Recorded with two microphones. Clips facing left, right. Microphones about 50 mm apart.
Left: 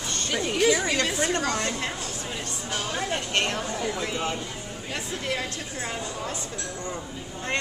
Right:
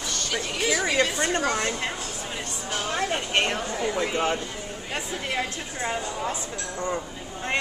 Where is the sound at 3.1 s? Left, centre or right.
Centre.